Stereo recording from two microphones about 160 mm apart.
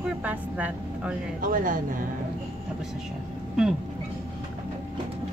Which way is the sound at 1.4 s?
55° right (ahead or behind).